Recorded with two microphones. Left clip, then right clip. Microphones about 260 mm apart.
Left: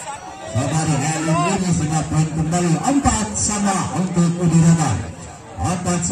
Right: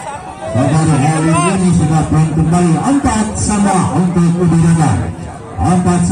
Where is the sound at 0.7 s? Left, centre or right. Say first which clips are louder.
Right 7 dB; left.